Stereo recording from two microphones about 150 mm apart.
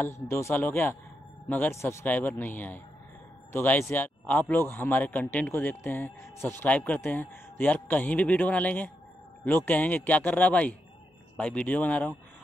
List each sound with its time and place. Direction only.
0.0 s speech: 20° left (ahead or behind)